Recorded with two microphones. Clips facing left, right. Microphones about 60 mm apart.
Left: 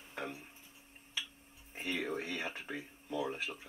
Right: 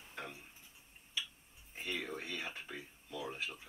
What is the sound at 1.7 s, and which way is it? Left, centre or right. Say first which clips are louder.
Speech: left 4 dB; centre.